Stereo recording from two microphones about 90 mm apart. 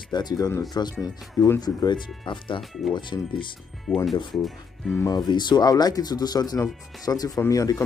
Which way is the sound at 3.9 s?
5° left (ahead or behind).